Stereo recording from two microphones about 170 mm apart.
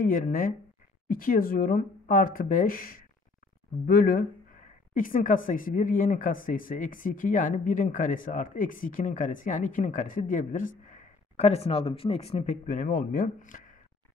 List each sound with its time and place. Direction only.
0.0 s speech: 55° left (ahead or behind)